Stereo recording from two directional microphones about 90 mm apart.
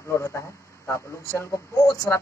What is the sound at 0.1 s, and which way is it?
A man's voice, 30° left (ahead or behind).